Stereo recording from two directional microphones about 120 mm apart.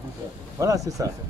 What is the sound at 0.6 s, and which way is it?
Speech, 30° right (ahead or behind).